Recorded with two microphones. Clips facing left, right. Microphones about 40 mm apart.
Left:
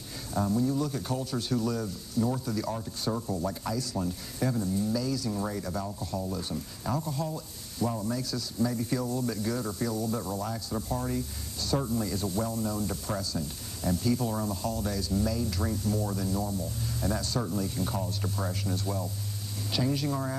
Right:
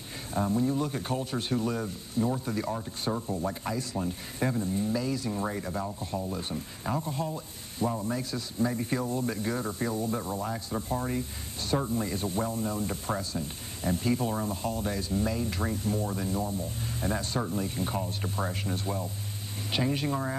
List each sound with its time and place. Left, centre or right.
0.3 s speech: right